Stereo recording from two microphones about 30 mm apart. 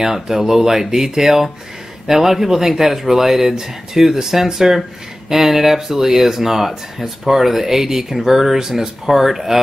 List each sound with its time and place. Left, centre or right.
0.0 s speech: centre